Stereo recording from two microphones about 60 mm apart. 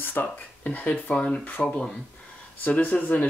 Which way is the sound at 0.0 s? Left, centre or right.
Left.